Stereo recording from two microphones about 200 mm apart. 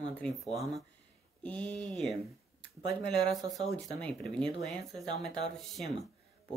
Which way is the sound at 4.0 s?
5° left (ahead or behind).